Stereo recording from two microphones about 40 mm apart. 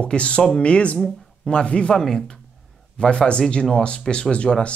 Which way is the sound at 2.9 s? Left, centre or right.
Left.